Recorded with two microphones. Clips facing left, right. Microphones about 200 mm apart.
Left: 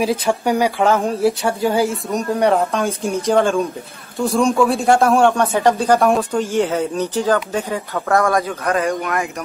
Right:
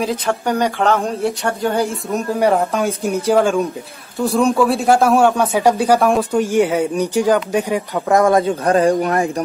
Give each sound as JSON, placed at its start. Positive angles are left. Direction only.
{"t": 0.0, "sound": "speech", "side_deg": 10}